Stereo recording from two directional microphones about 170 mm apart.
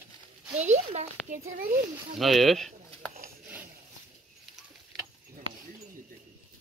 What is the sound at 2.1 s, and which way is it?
Speech, centre (ahead or behind).